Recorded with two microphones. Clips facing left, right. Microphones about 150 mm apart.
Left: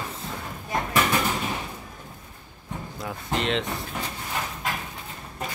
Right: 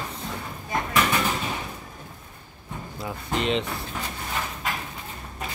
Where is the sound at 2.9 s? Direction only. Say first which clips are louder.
Right 1 dB; centre (ahead or behind).